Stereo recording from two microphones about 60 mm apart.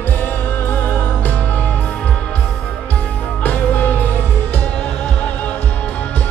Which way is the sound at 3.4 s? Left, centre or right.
Left.